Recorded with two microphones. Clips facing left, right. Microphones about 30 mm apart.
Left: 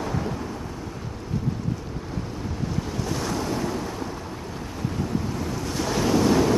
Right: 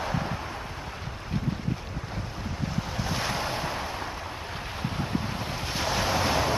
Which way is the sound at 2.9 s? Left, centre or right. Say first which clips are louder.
Left 1 dB; right.